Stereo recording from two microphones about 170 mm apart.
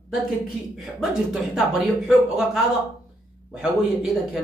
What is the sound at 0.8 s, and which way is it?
Speech, centre (ahead or behind).